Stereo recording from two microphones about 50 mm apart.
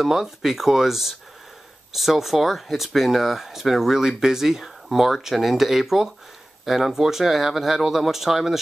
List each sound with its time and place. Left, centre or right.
0.0 s speech: centre